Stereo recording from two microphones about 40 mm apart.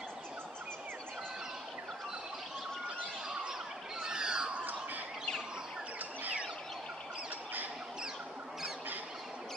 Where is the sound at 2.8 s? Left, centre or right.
Right.